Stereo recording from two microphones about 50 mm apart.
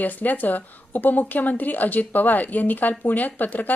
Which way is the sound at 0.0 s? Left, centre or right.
Left.